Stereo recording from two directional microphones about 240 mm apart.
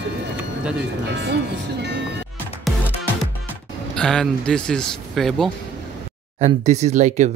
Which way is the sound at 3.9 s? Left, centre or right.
Centre.